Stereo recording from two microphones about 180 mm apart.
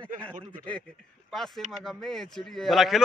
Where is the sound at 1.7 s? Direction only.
Centre (ahead or behind).